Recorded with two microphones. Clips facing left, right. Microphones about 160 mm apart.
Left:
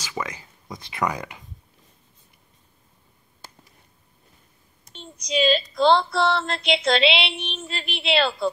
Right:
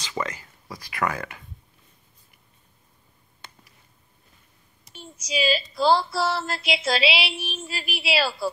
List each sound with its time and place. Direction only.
0.0 s speech: 10° left (ahead or behind)
4.9 s a woman's voice: 5° right (ahead or behind)
6.1 s a sound: 5° right (ahead or behind)